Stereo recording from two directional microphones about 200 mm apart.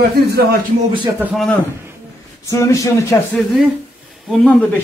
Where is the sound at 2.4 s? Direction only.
15° left (ahead or behind).